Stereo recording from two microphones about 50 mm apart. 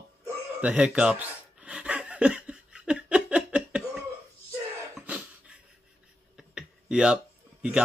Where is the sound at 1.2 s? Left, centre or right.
Right.